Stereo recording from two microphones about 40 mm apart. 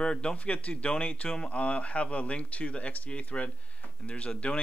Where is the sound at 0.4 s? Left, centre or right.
Left.